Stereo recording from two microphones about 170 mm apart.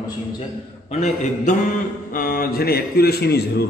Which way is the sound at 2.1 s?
60° left (ahead or behind).